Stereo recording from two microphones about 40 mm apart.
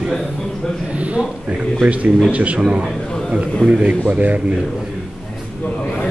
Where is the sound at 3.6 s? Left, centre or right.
Left.